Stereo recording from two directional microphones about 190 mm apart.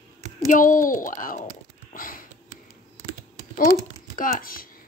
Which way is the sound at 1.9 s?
45° left (ahead or behind).